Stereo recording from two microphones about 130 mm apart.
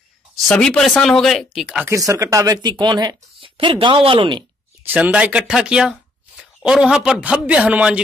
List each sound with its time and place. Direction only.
0.5 s speech: 5° left (ahead or behind)
1.9 s speech: 25° right (ahead or behind)
4.8 s speech: 10° right (ahead or behind)